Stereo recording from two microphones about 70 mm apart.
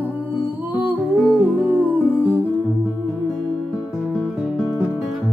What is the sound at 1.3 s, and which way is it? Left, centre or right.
Music, right.